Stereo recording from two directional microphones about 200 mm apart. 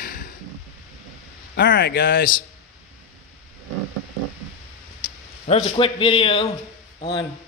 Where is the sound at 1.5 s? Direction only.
50° left (ahead or behind).